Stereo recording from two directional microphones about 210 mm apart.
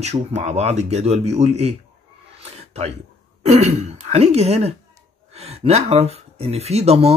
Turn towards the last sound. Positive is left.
turn(degrees=-30)  # may be behind; listen again after turning